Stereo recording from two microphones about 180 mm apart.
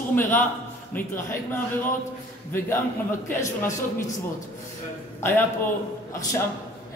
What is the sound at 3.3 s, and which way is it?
Speech, 15° left (ahead or behind).